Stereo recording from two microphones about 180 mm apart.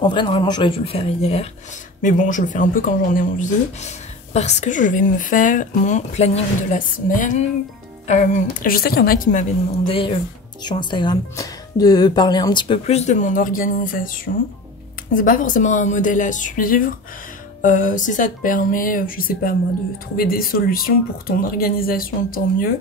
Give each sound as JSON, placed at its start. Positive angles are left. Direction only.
{"t": 0.0, "sound": "speech", "side_deg": 25}
{"t": 2.0, "sound": "speech", "side_deg": 45}
{"t": 9.8, "sound": "speech", "side_deg": 30}